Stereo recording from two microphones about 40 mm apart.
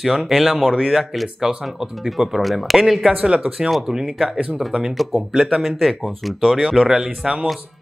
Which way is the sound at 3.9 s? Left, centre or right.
Centre.